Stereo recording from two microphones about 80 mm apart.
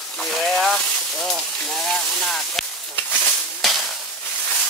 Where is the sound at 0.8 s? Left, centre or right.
Centre.